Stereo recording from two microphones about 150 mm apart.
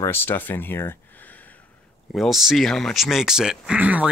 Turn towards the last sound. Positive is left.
turn(degrees=-10)  # may be behind; listen again after turning